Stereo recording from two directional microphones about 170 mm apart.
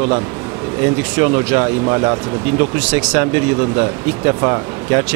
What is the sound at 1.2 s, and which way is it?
Speech, 15° right (ahead or behind).